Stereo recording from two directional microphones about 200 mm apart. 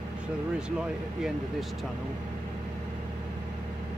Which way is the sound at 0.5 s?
5° right (ahead or behind).